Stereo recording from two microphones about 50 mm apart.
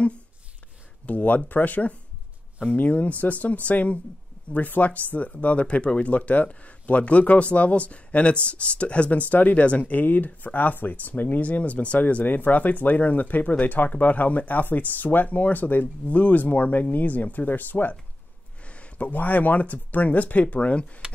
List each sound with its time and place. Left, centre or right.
1.0 s speech: left
18.6 s speech: left